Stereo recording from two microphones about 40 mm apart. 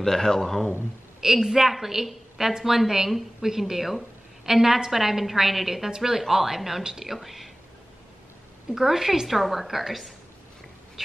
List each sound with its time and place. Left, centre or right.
0.0 s speech: centre
1.2 s a woman's voice: centre
7.2 s speech: centre
8.7 s a woman's voice: centre